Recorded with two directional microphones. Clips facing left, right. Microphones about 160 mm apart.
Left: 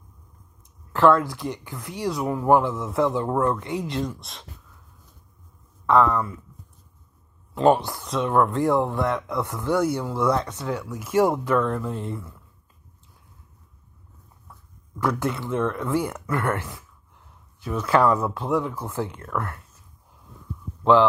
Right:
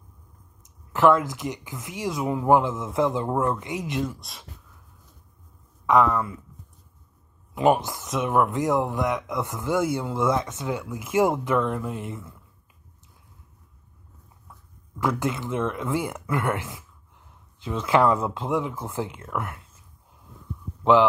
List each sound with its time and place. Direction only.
0.7 s speech: 15° right (ahead or behind)
4.0 s speech: 5° right (ahead or behind)
6.0 s speech: 5° right (ahead or behind)
7.5 s speech: 15° right (ahead or behind)
15.0 s speech: 20° right (ahead or behind)
20.8 s speech: 15° right (ahead or behind)